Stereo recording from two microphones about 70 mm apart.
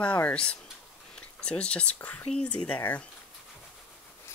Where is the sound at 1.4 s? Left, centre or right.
Centre.